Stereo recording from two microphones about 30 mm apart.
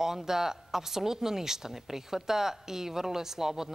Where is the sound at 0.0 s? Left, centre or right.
Centre.